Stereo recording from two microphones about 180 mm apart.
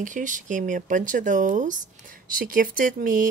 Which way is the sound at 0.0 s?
45° right (ahead or behind).